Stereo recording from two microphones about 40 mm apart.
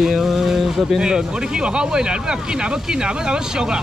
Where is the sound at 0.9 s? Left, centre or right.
Centre.